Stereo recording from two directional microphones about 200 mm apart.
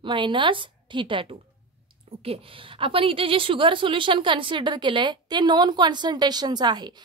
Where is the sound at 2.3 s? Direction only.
25° right (ahead or behind).